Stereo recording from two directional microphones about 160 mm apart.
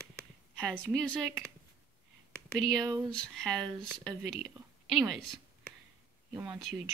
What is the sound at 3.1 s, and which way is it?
Speech, 5° left (ahead or behind).